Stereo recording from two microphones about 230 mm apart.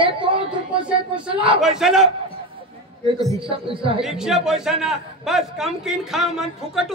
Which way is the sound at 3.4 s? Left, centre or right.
Right.